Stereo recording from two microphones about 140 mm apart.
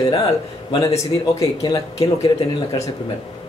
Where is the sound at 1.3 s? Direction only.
25° left (ahead or behind).